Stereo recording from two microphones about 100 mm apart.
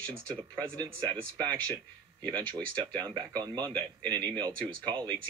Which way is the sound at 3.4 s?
45° right (ahead or behind).